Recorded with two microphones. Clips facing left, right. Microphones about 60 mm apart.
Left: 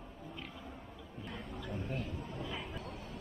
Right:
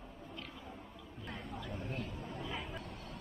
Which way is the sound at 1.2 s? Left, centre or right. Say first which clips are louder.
Even; centre.